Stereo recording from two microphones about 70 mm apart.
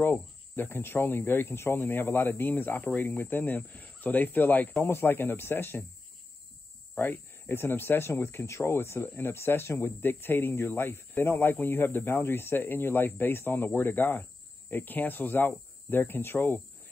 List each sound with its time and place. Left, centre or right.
0.0 s speech: left
7.0 s speech: left